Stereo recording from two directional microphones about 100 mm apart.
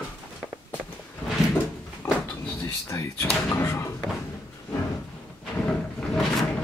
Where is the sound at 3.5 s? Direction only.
25° left (ahead or behind).